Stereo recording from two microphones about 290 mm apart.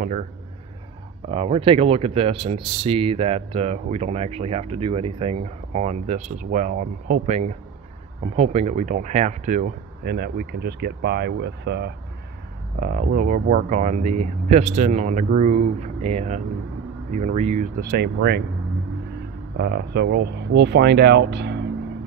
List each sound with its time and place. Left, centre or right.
0.0 s a man's voice: right
1.3 s speech: centre; by 18.4 s right
19.5 s speech: right